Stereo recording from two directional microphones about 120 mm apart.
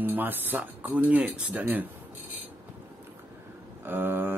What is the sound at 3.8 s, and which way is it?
Mantra, 20° right (ahead or behind).